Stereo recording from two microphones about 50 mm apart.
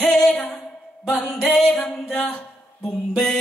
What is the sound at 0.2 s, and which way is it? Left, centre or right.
Music, centre.